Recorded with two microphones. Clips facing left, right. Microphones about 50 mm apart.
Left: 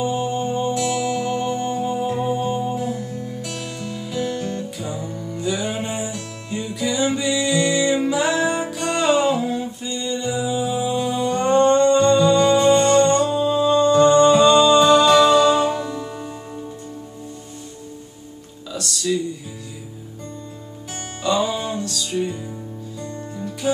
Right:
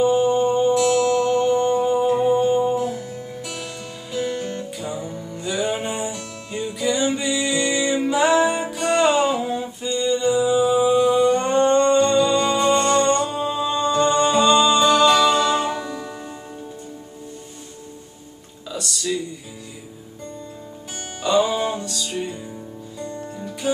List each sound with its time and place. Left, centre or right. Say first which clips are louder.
0.0 s music: right 5 dB; centre
4.3 s music: left 1 dB; centre
4.7 s music: even; centre
18.7 s music: left 2 dB; centre
21.5 s music: right 2 dB; centre
22.9 s music: right 2 dB; centre
23.6 s music: left 1 dB; centre